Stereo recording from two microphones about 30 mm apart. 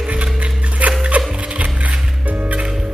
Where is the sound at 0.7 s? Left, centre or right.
Right.